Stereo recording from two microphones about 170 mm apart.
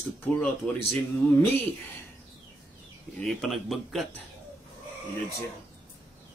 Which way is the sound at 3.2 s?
5° left (ahead or behind).